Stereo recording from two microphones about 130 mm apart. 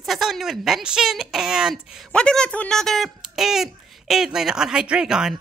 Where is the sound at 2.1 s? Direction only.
5° left (ahead or behind).